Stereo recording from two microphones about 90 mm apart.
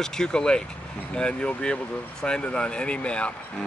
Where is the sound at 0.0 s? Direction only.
5° left (ahead or behind).